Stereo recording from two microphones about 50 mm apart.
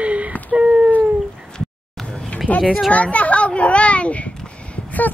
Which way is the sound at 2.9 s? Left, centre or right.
Left.